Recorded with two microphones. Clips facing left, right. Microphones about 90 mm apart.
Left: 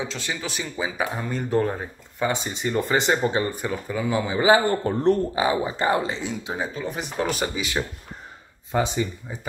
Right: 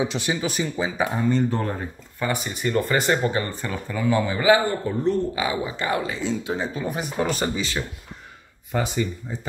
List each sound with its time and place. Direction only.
0.0 s speech: 15° right (ahead or behind)
0.5 s speech: centre (ahead or behind)
2.1 s speech: 20° left (ahead or behind)
4.6 s a man's voice: 55° left (ahead or behind)
5.3 s speech: 30° left (ahead or behind); by 6.7 s 15° left (ahead or behind)
6.7 s speech: 5° right (ahead or behind)
8.7 s speech: 20° left (ahead or behind)